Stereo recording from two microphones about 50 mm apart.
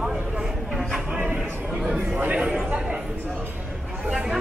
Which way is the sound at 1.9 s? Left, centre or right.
Right.